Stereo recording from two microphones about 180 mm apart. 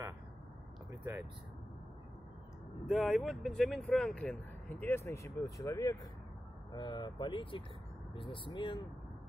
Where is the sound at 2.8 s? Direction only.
Centre (ahead or behind); by 8.8 s 25° left (ahead or behind).